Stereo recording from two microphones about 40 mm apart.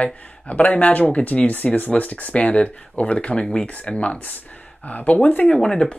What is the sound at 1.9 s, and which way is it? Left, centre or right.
Speech, left.